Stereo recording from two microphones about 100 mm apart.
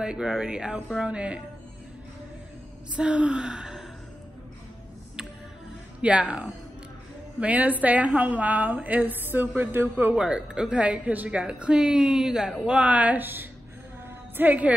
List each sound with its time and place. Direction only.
0.0 s a woman's voice: 5° right (ahead or behind)
3.0 s a woman's voice: 10° right (ahead or behind)
5.9 s a woman's voice: 15° right (ahead or behind)
10.1 s a woman's voice: 10° right (ahead or behind)